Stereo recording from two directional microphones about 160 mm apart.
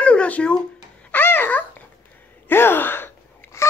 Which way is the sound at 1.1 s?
15° left (ahead or behind).